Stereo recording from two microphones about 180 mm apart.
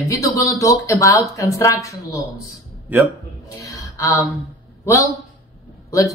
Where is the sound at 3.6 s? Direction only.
20° left (ahead or behind).